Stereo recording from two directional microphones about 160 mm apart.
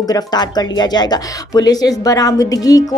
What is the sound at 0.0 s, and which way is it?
Speech, 25° left (ahead or behind).